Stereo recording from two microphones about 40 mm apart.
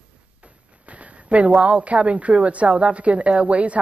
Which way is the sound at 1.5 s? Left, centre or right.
Right.